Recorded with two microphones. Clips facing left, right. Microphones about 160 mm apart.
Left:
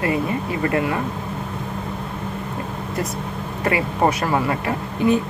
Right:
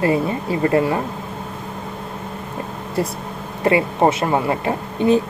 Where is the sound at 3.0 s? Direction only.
30° right (ahead or behind).